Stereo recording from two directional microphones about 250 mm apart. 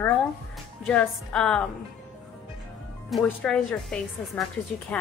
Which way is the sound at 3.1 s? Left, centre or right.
Centre.